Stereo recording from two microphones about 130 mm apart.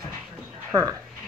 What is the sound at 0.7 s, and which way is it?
Speech, 25° right (ahead or behind).